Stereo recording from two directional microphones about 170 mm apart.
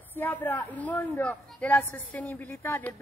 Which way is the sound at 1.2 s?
10° left (ahead or behind).